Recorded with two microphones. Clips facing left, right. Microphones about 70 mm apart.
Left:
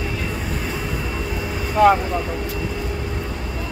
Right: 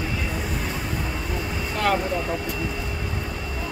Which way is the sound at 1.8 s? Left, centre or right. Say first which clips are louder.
Left 10 dB; centre.